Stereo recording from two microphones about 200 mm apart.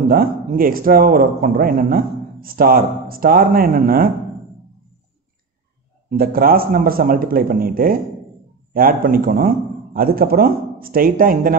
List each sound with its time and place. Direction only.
0.1 s a man's voice: 45° right (ahead or behind)
6.0 s a man's voice: 45° right (ahead or behind)